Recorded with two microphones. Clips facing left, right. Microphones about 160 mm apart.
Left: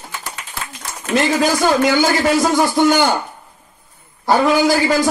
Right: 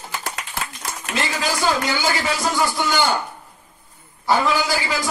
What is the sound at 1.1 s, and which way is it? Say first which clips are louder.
A man's voice: left 9 dB; 45° left (ahead or behind).